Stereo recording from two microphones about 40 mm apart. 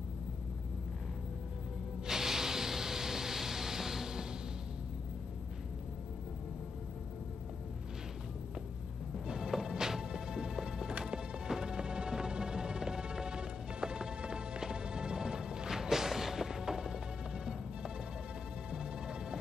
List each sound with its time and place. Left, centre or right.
2.0 s a sound: centre
9.3 s music: centre
18.7 s music: centre